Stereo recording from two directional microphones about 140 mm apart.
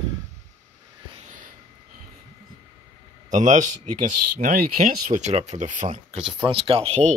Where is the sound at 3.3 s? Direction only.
60° right (ahead or behind); by 5.2 s 85° right.